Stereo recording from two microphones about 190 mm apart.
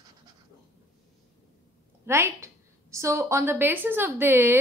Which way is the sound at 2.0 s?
15° right (ahead or behind).